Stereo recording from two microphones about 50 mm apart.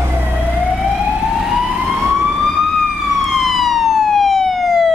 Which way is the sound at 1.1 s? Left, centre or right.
Centre.